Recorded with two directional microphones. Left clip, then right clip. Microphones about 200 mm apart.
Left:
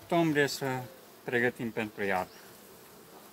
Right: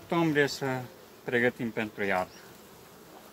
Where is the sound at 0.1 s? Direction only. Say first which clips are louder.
Right 1 dB; 30° left (ahead or behind).